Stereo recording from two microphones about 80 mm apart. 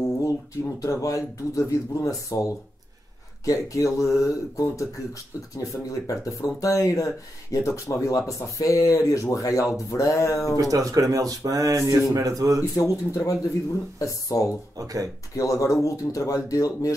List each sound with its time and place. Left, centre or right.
0.7 s speech: left
10.6 s speech: right
12.7 s speech: left
14.8 s speech: right
15.3 s speech: left